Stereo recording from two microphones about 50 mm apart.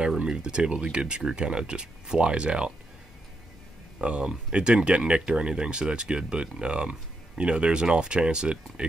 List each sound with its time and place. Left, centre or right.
0.2 s speech: centre
4.0 s speech: right